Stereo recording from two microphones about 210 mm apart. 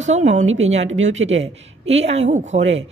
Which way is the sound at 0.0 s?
35° right (ahead or behind).